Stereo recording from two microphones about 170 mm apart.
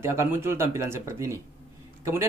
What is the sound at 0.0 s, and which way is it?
Speech, 15° right (ahead or behind).